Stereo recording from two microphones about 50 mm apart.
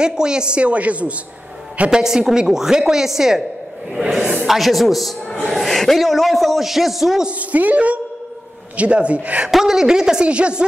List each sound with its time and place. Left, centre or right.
0.0 s speech: centre
1.9 s a woman's voice: centre
7.2 s speech: right
9.5 s a woman's voice: centre